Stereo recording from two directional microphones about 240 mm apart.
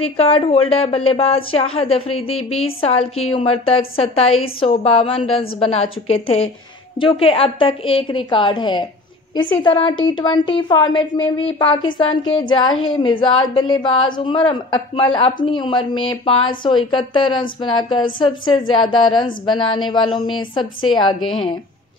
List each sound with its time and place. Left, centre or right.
0.0 s a woman's voice: left